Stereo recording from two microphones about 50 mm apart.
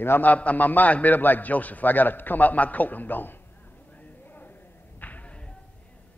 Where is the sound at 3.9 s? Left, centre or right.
Left.